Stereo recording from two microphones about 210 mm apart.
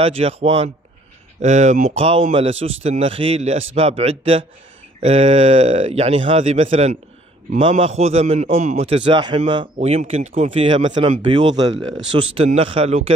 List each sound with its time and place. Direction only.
0.0 s a man's voice: 30° right (ahead or behind)